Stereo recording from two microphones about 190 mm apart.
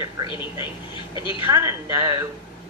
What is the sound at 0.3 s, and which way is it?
A woman's voice, 25° left (ahead or behind).